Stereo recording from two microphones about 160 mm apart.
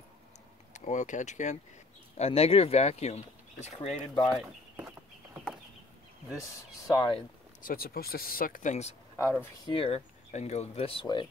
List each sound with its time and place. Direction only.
0.7 s speech: 50° left (ahead or behind)
4.1 s speech: 30° left (ahead or behind)
6.9 s speech: 30° left (ahead or behind)
7.6 s speech: 70° left (ahead or behind); by 8.9 s 50° left (ahead or behind)
9.7 s speech: 35° left (ahead or behind)